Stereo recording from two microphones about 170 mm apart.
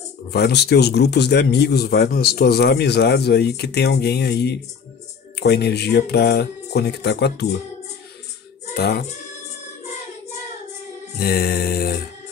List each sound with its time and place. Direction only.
0.3 s speech: 75° left (ahead or behind)
8.7 s speech: 70° left (ahead or behind)
11.1 s music: 65° left (ahead or behind)